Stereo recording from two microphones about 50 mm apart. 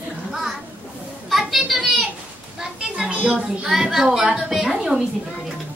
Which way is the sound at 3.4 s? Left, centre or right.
Centre.